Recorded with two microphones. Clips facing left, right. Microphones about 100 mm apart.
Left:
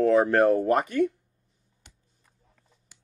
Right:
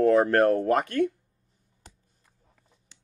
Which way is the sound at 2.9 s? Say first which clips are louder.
Even; 5° left (ahead or behind).